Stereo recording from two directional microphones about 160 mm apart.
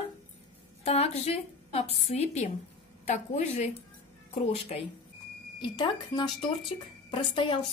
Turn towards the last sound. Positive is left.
turn(degrees=30)  # may be behind; listen again after turning